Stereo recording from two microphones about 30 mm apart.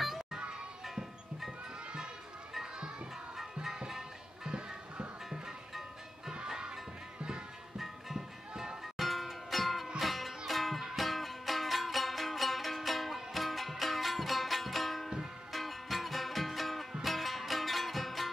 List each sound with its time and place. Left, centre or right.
4.5 s music: right
7.7 s music: centre